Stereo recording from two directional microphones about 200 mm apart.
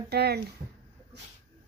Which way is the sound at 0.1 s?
50° right (ahead or behind).